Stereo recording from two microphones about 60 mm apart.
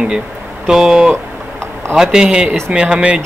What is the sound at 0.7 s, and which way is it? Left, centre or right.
Speech, centre.